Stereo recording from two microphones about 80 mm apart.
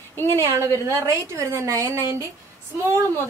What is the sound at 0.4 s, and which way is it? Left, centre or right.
A woman's voice, right.